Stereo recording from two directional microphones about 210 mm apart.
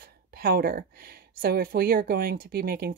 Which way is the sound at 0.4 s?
45° right (ahead or behind).